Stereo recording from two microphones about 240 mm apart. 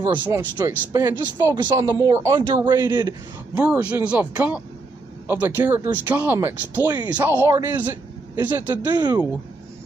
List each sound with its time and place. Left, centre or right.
0.2 s speech: centre
3.5 s speech: centre